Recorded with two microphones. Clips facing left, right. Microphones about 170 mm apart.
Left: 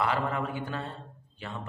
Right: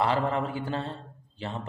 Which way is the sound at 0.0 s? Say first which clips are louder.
Right 3 dB; 30° right (ahead or behind).